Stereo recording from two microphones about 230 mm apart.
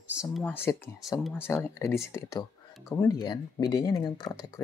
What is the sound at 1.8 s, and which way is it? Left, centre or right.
A woman's voice, centre.